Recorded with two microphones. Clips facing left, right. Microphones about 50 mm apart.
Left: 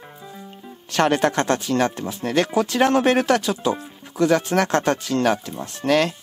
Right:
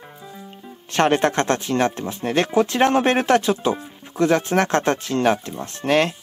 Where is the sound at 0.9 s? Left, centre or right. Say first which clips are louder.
Right 1 dB; right.